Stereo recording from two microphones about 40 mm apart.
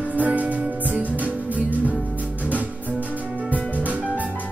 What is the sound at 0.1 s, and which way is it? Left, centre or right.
Music, right.